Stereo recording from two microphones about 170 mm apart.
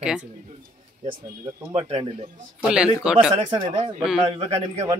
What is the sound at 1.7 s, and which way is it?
Speech, 35° right (ahead or behind).